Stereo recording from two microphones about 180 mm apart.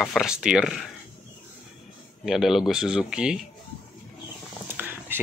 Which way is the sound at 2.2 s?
Centre (ahead or behind).